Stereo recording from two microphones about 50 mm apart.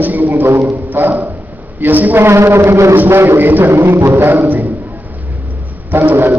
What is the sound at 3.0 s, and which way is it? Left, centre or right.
Speech, right.